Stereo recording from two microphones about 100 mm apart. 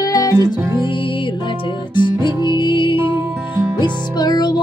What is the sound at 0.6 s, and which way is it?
Music, 25° right (ahead or behind).